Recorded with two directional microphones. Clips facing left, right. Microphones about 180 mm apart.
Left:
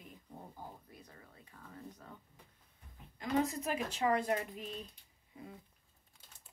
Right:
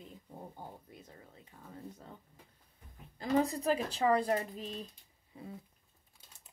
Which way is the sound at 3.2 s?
35° right (ahead or behind).